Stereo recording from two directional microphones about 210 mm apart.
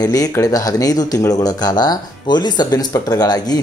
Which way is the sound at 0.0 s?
15° left (ahead or behind).